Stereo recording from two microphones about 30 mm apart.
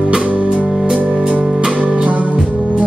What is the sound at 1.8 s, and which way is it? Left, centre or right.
Music, right.